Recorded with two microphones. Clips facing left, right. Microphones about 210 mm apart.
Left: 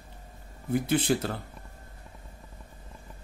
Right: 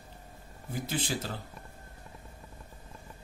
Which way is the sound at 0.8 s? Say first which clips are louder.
Left 7 dB; 60° left (ahead or behind).